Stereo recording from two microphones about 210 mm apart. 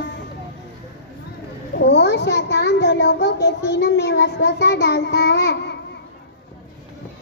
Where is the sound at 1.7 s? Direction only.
55° left (ahead or behind).